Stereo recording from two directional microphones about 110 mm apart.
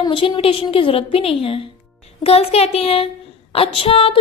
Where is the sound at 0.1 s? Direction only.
55° left (ahead or behind).